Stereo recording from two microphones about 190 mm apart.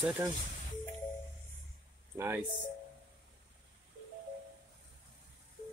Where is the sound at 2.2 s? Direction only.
15° right (ahead or behind).